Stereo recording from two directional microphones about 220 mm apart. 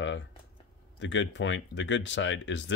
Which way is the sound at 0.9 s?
55° left (ahead or behind).